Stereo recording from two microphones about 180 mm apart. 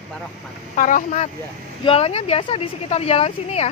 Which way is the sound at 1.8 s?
30° left (ahead or behind).